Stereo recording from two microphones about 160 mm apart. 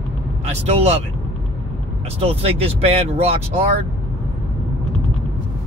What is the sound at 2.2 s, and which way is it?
Speech, 40° right (ahead or behind).